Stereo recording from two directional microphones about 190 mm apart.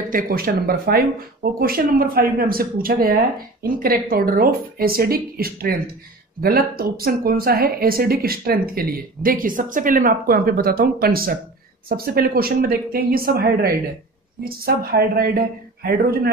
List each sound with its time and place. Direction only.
0.1 s speech: 50° right (ahead or behind)